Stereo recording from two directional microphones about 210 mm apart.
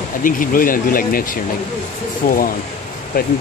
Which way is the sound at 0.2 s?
40° left (ahead or behind).